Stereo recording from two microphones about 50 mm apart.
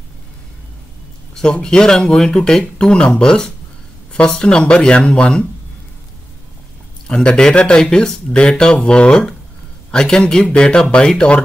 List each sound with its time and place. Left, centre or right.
1.3 s speech: centre
7.1 s a man's voice: centre